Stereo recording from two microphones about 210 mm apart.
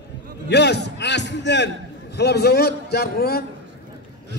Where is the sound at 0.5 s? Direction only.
55° left (ahead or behind).